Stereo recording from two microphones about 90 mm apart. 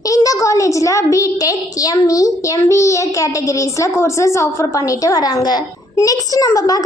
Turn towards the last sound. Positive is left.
turn(degrees=40)  # may be behind; listen again after turning